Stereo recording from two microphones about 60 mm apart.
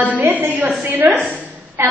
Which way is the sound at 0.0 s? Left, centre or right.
Right.